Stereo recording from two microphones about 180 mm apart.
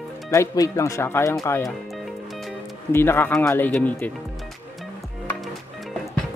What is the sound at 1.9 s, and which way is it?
Music, centre (ahead or behind).